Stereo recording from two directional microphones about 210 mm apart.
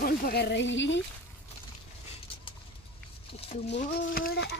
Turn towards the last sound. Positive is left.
turn(degrees=50)  # may be behind; listen again after turning